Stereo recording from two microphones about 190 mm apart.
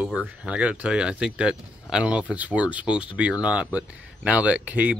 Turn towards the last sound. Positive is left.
turn(degrees=-5)  # may be behind; listen again after turning